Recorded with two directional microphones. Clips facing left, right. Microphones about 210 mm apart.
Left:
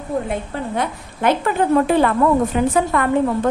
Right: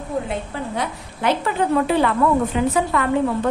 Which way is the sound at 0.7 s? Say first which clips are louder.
Left 3 dB; 50° left (ahead or behind).